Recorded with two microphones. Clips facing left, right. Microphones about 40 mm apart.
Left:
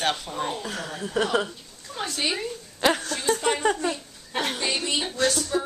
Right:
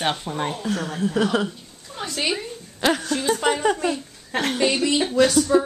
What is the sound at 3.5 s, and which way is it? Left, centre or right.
Speech, centre.